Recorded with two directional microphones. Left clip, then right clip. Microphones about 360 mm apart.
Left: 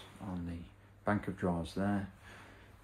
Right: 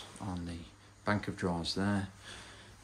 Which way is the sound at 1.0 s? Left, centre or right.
Centre.